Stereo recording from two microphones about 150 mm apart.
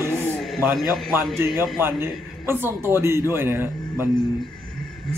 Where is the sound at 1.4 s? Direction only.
15° right (ahead or behind).